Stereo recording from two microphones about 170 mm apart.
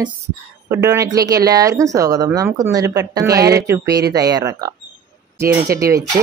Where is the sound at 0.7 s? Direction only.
20° right (ahead or behind).